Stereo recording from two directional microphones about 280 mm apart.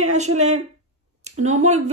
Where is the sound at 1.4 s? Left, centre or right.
Right.